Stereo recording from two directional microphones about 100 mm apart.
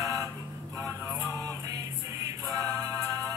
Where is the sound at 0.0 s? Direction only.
35° right (ahead or behind).